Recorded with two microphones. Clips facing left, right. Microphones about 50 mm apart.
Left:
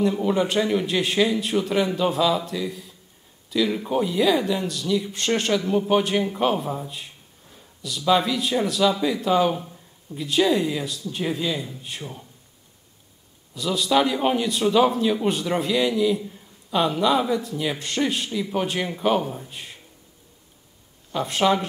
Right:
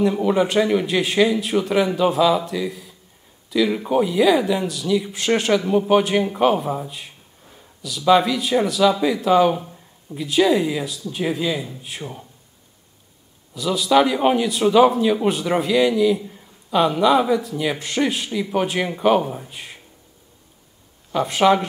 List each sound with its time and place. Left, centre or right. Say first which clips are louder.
0.0 s a man's voice: right 3 dB; centre
8.1 s speech: right 4 dB; centre
13.6 s speech: right 4 dB; centre
16.2 s a sound: even; centre
16.7 s speech: right 4 dB; centre
21.1 s speech: right 4 dB; centre